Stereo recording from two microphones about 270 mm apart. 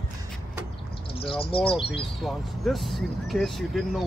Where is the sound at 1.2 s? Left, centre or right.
Centre.